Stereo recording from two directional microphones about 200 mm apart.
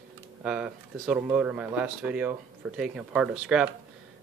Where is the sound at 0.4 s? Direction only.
5° right (ahead or behind).